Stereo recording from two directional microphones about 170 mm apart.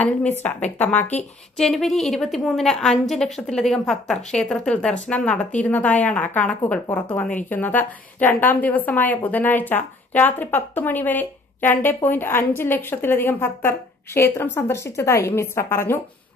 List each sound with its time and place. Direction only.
0.0 s a woman's voice: 10° left (ahead or behind)